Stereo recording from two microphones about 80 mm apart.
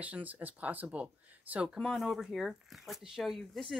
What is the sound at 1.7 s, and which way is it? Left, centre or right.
Speech, centre.